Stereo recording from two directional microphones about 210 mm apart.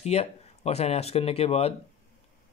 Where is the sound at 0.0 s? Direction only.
30° left (ahead or behind).